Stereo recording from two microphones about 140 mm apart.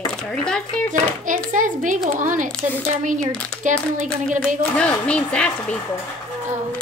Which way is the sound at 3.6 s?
65° right (ahead or behind).